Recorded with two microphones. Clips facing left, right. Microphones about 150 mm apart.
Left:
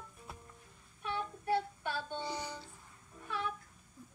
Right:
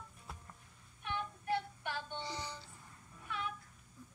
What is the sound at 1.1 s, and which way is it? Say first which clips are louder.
Music: left 3 dB; 35° left (ahead or behind).